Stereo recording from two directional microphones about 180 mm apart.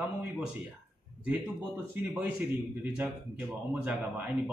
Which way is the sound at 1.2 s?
10° right (ahead or behind).